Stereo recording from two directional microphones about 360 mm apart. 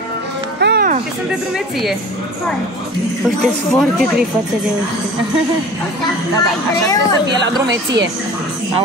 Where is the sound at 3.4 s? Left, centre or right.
Centre.